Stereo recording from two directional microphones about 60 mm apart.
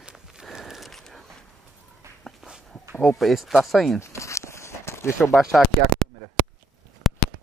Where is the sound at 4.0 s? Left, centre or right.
Left.